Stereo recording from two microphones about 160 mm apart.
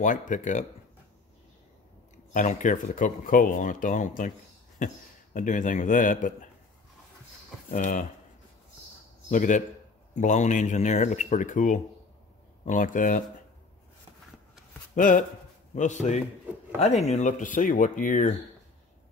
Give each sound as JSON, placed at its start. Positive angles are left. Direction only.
{"t": 0.0, "sound": "speech", "side_deg": 55}
{"t": 2.3, "sound": "speech", "side_deg": 55}
{"t": 7.7, "sound": "speech", "side_deg": 50}
{"t": 9.3, "sound": "speech", "side_deg": 50}
{"t": 15.0, "sound": "speech", "side_deg": 55}